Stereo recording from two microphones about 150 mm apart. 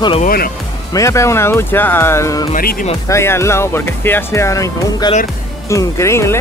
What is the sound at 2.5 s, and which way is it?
Speech, 75° left (ahead or behind).